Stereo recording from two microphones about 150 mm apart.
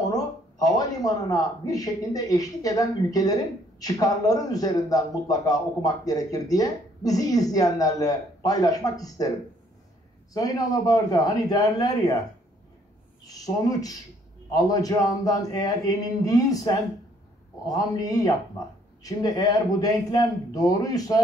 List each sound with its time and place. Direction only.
0.1 s a man's voice: 25° left (ahead or behind)
10.3 s a man's voice: 25° left (ahead or behind)
13.3 s a man's voice: 25° left (ahead or behind)